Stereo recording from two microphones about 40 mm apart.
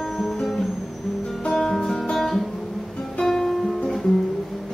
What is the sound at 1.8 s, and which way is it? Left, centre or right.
Music, centre.